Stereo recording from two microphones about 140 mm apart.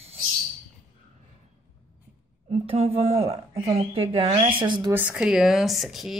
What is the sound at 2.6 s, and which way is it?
Speech, 45° right (ahead or behind).